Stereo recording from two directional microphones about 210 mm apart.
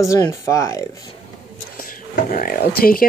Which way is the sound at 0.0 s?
15° left (ahead or behind).